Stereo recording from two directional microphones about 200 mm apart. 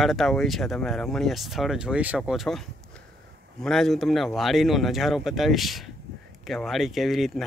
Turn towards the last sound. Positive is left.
turn(degrees=0)  # may be behind; listen again after turning